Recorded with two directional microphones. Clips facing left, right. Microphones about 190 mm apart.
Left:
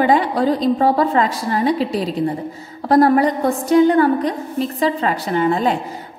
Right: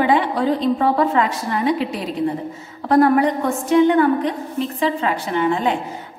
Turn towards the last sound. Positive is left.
turn(degrees=40)  # may be behind; listen again after turning